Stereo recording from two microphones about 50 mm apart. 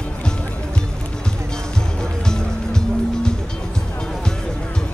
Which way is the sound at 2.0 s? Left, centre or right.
Centre.